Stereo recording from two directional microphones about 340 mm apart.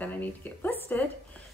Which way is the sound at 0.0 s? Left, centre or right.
Centre.